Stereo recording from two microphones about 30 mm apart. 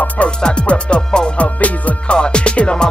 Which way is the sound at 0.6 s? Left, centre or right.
Left.